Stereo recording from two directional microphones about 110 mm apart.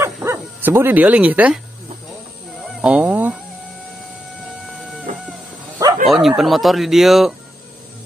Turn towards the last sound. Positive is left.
turn(degrees=0)  # may be behind; listen again after turning